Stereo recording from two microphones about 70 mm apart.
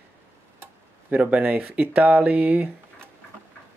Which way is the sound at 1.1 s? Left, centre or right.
Right.